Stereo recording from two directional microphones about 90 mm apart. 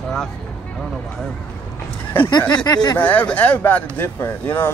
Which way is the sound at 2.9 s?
20° left (ahead or behind).